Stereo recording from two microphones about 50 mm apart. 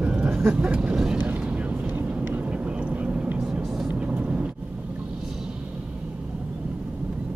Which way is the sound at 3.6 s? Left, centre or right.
Centre.